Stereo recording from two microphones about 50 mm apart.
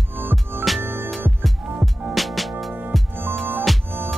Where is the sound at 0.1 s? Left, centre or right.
Right.